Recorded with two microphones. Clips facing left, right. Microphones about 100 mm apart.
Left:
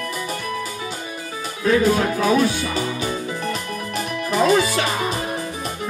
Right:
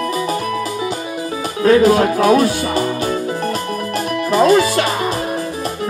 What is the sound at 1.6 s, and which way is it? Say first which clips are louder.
Speech: right 6 dB; 75° right (ahead or behind).